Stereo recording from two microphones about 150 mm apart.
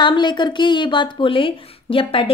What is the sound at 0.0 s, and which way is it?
Speech, 30° left (ahead or behind).